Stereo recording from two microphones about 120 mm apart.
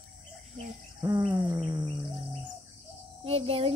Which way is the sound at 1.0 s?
30° right (ahead or behind).